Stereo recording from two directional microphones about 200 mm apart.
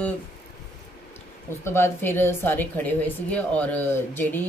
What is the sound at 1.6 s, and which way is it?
A woman's voice, 10° left (ahead or behind).